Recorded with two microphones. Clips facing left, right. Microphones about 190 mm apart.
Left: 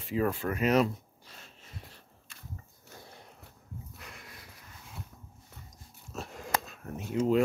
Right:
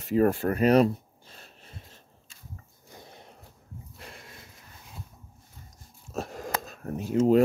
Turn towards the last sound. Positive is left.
turn(degrees=-40)  # may be behind; listen again after turning